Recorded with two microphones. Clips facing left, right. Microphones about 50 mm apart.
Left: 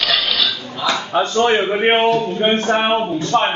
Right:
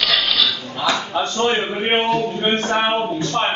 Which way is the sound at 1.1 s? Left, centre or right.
Left.